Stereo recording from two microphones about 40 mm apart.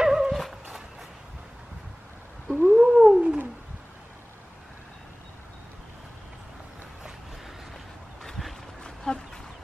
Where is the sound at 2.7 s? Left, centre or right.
Centre.